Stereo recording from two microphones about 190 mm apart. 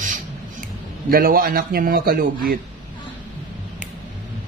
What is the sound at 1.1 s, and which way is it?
A man's voice, 50° right (ahead or behind).